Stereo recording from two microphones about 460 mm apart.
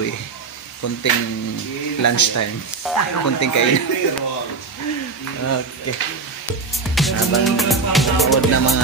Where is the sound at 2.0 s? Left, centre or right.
Left.